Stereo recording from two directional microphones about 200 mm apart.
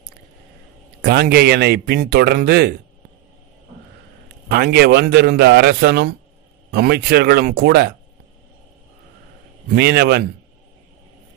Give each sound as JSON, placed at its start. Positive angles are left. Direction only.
{"t": 1.0, "sound": "a man's voice", "side_deg": -55}
{"t": 4.5, "sound": "a man's voice", "side_deg": -55}
{"t": 9.8, "sound": "speech", "side_deg": -55}